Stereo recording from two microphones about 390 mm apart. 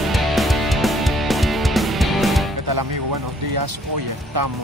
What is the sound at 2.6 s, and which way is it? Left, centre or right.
Music, right.